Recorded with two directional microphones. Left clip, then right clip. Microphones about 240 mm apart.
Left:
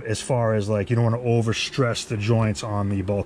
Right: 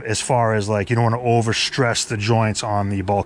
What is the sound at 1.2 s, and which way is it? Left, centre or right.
Speech, right.